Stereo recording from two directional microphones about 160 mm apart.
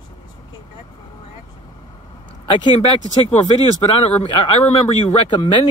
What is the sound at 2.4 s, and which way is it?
Speech, 30° left (ahead or behind).